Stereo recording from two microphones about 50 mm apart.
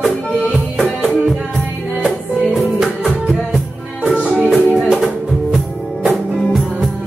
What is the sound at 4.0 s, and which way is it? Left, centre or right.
Music, right.